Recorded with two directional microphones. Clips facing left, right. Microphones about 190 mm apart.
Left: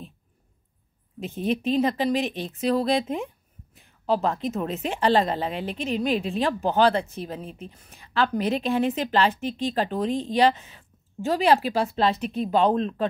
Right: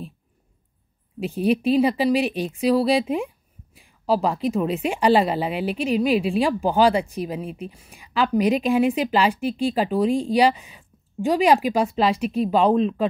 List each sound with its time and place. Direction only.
1.2 s speech: 10° right (ahead or behind)